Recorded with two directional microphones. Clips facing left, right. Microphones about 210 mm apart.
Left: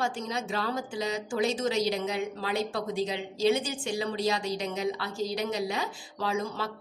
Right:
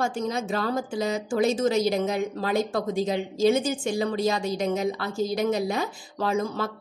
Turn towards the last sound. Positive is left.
turn(degrees=-50)  # may be behind; listen again after turning